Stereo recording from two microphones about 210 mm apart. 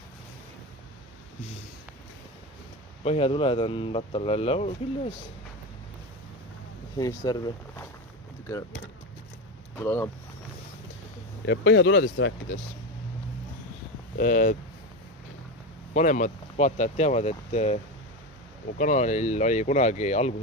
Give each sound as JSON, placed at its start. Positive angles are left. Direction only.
{"t": 3.0, "sound": "speech", "side_deg": 30}
{"t": 7.0, "sound": "speech", "side_deg": 20}
{"t": 9.8, "sound": "speech", "side_deg": 10}
{"t": 11.4, "sound": "speech", "side_deg": 60}
{"t": 14.1, "sound": "speech", "side_deg": 45}
{"t": 15.9, "sound": "speech", "side_deg": 35}
{"t": 18.8, "sound": "speech", "side_deg": 35}